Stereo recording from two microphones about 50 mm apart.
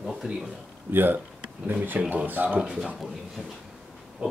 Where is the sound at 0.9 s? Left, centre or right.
Right.